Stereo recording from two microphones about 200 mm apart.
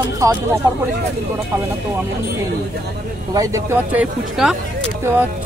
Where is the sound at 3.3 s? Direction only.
15° right (ahead or behind).